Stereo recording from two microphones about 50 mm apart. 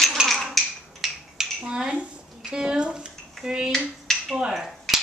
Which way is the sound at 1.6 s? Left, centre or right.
Centre.